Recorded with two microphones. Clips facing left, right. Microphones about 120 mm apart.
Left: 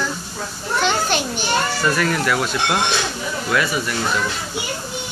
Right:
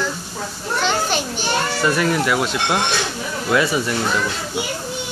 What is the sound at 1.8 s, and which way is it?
Speech, 20° right (ahead or behind).